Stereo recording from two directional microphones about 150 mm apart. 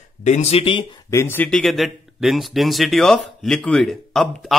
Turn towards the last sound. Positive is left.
turn(degrees=0)  # may be behind; listen again after turning